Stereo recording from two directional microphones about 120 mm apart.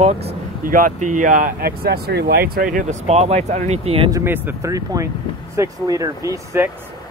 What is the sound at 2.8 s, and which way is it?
Speech, 60° right (ahead or behind).